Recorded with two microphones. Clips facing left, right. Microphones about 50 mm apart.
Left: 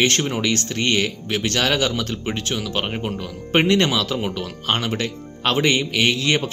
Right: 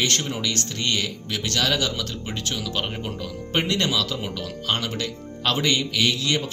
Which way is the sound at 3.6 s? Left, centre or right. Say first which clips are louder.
Left 6 dB; left.